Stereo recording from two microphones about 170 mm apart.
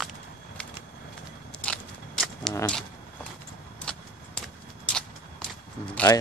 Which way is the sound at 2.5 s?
10° left (ahead or behind).